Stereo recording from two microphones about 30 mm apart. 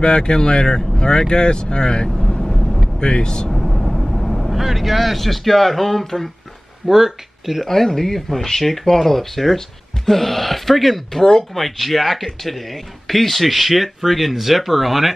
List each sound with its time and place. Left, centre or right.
0.0 s speech: left
2.0 s vehicle: centre
3.0 s speech: left
3.4 s vehicle: centre
4.6 s speech: centre
6.9 s speech: centre
7.6 s speech: centre